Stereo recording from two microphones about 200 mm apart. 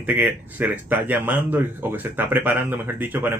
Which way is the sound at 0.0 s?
10° right (ahead or behind).